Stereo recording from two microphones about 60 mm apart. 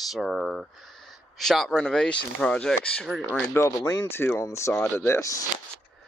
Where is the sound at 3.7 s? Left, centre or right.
Left.